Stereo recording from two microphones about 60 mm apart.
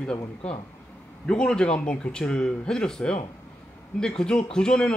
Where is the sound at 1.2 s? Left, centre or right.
Centre.